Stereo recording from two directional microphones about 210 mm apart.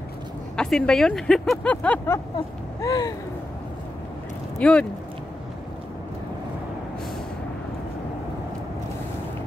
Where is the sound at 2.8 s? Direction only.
15° left (ahead or behind).